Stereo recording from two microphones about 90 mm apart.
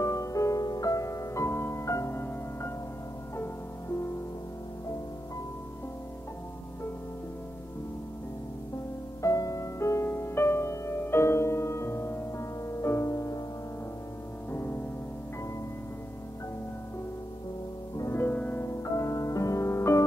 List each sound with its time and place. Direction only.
0.0 s music: 35° left (ahead or behind)
9.2 s music: 40° left (ahead or behind)
14.5 s music: 30° left (ahead or behind)
17.9 s music: 30° left (ahead or behind)
18.6 s music: 30° left (ahead or behind)